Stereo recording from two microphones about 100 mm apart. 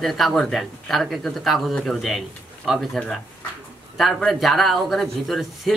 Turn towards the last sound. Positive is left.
turn(degrees=0)  # may be behind; listen again after turning